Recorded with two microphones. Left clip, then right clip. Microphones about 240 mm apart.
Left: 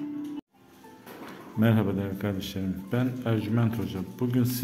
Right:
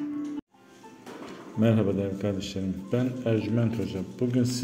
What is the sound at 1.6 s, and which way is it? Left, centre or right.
A man's voice, centre.